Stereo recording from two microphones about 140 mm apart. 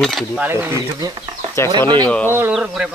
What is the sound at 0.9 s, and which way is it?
Speech, 30° right (ahead or behind).